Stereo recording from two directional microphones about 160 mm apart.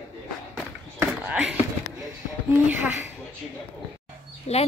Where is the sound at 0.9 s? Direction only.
10° right (ahead or behind).